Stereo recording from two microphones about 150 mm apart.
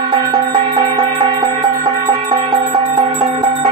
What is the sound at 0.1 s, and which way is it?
Music, 30° right (ahead or behind).